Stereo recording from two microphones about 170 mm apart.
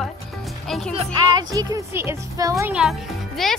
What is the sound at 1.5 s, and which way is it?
Speech, 20° right (ahead or behind).